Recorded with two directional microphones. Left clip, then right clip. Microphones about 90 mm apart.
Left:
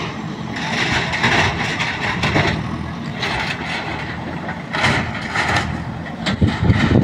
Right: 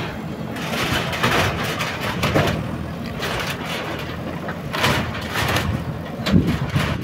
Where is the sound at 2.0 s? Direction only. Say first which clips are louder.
Left 1 dB; 35° right (ahead or behind).